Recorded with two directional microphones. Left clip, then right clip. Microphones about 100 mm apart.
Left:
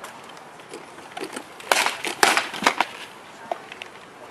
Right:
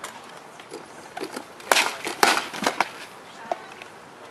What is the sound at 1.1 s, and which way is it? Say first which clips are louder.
Crumpling: even; centre (ahead or behind).